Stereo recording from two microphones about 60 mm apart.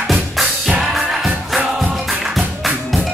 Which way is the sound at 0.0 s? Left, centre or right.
Centre.